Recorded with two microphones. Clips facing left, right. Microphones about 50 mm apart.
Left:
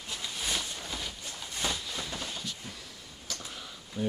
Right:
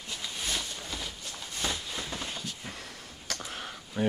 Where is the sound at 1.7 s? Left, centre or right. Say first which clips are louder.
Even; centre.